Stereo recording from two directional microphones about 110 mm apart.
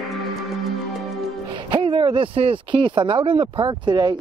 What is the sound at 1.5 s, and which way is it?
Speech, 55° right (ahead or behind).